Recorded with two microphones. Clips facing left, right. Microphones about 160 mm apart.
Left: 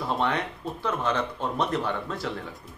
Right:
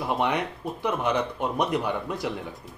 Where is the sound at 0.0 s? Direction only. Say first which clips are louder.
Right 1 dB; 15° right (ahead or behind).